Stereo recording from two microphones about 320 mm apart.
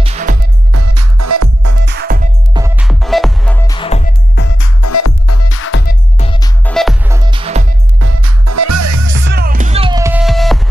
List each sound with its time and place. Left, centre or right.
0.0 s music: right
0.7 s music: right
1.9 s music: right
2.5 s music: centre
4.6 s music: left
6.1 s music: centre
6.6 s music: centre
8.0 s music: right
9.2 s music: right; by 10.7 s centre